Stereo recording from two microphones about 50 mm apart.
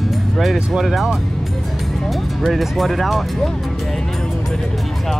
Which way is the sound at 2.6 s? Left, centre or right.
Centre.